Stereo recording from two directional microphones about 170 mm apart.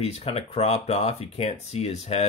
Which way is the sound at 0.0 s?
40° left (ahead or behind).